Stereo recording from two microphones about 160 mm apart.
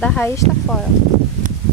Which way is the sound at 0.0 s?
5° left (ahead or behind).